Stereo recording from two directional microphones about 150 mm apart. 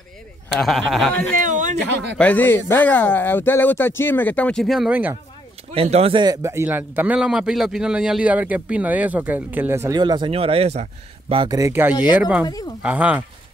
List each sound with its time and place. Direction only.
0.6 s a man's voice: centre (ahead or behind)
1.3 s a sound: 60° right (ahead or behind)
2.1 s speech: 10° left (ahead or behind); by 5.1 s 10° right (ahead or behind)
5.7 s a man's voice: 45° right (ahead or behind)
6.2 s speech: 20° right (ahead or behind)
9.9 s a man's voice: 30° right (ahead or behind)
11.4 s speech: 20° right (ahead or behind)
11.9 s speech: 30° left (ahead or behind)
12.2 s speech: 10° right (ahead or behind)